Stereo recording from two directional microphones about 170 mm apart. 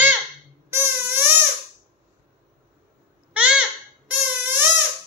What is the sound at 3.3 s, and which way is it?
Babbling, 5° right (ahead or behind).